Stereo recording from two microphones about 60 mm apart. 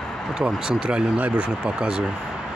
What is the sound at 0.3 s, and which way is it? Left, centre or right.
Speech, centre.